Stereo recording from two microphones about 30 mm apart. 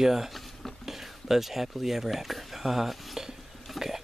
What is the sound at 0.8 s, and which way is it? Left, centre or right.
Speech, centre.